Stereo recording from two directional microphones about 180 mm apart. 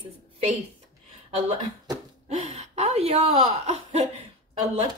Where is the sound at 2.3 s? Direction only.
40° right (ahead or behind).